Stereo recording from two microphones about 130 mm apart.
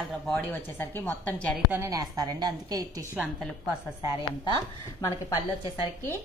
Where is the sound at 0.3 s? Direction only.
15° left (ahead or behind).